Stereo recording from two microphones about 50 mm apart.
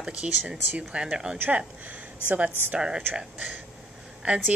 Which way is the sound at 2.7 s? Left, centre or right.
Centre.